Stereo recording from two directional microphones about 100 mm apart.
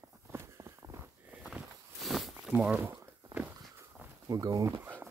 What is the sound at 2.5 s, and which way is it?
Speech, 15° right (ahead or behind).